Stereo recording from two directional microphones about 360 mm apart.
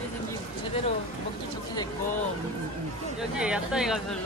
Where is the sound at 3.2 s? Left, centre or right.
Centre.